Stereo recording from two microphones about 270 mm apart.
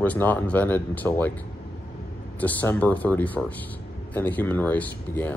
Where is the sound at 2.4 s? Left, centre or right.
Centre.